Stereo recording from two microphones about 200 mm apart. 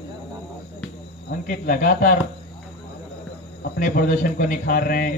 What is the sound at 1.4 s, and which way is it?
Speech, 45° left (ahead or behind).